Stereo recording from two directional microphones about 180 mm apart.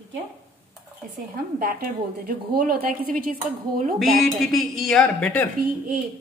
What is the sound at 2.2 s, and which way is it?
Speech, 55° right (ahead or behind).